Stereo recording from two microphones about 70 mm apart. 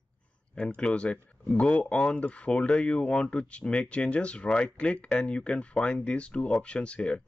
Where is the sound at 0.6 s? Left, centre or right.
Centre.